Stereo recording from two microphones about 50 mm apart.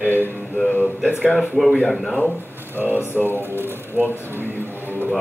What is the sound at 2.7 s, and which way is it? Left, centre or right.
Speech, right.